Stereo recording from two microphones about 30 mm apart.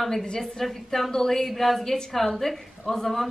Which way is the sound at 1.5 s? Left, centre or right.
Centre.